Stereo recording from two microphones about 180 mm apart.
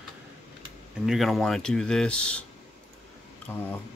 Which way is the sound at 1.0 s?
Centre (ahead or behind).